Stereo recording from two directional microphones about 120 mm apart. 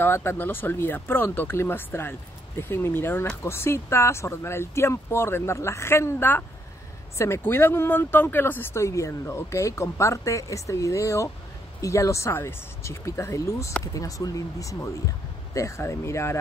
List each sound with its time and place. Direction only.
0.0 s speech: 20° left (ahead or behind)